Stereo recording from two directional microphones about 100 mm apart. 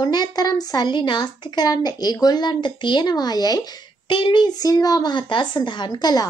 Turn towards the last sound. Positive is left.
turn(degrees=45)  # may be behind; listen again after turning